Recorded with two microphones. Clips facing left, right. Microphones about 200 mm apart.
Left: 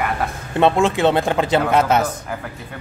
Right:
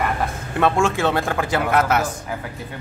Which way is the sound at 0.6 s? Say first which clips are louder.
Left 3 dB; 20° left (ahead or behind).